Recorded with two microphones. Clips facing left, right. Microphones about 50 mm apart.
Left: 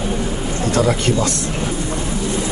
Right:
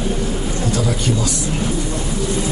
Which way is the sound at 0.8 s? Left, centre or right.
Left.